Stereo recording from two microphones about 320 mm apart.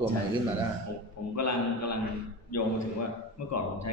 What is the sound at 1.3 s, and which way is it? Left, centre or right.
A man's voice, left.